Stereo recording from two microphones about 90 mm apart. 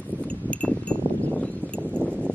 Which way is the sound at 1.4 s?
15° left (ahead or behind).